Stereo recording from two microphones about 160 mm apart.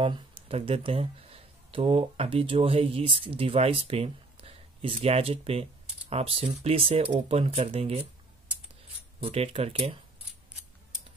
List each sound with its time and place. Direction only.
0.0 s speech: 35° right (ahead or behind)
9.2 s speech: 40° right (ahead or behind)